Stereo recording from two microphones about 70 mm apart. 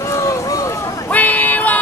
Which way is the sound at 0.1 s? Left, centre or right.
Left.